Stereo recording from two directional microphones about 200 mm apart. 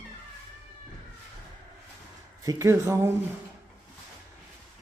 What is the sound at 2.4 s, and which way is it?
Speech, 15° right (ahead or behind).